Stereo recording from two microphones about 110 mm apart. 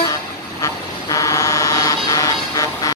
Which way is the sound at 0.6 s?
30° left (ahead or behind).